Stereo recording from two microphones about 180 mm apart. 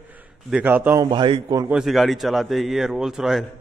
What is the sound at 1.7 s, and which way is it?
A man's voice, centre (ahead or behind).